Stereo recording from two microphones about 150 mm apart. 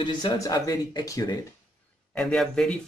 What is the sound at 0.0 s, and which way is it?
Speech, 25° left (ahead or behind).